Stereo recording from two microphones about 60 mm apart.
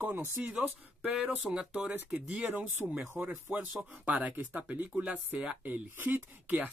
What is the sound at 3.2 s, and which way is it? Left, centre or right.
Speech, right.